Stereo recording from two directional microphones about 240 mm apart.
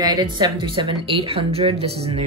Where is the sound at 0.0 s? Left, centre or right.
Centre.